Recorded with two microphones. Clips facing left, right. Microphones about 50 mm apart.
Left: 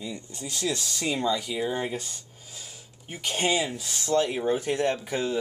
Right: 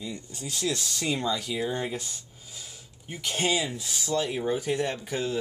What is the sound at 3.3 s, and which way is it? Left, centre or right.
Speech, centre.